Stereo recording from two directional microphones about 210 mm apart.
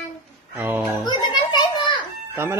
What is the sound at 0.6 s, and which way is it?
Speech, 10° right (ahead or behind).